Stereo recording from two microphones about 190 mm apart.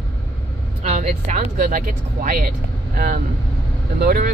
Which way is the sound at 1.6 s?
45° right (ahead or behind).